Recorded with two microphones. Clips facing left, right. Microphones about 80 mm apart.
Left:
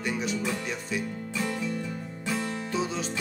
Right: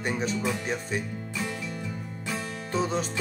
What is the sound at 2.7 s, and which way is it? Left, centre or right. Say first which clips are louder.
Music: right 4 dB; right.